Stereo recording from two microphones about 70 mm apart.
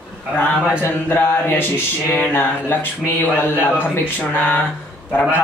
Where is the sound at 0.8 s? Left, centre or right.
Left.